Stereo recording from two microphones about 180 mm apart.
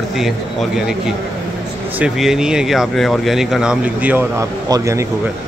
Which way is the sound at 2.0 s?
5° right (ahead or behind).